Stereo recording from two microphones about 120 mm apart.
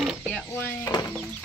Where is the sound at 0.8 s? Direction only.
30° left (ahead or behind).